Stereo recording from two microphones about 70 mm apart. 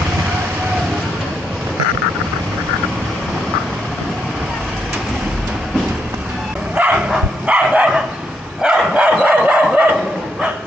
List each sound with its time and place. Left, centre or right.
6.7 s bow-wow: centre
7.4 s dog: centre